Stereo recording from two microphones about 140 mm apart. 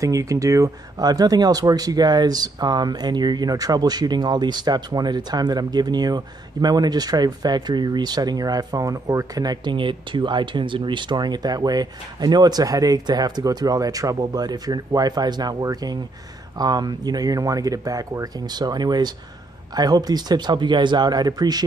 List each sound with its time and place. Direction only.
0.0 s speech: 25° right (ahead or behind)